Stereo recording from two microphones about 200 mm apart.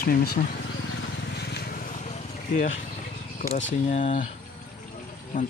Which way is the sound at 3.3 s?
40° left (ahead or behind).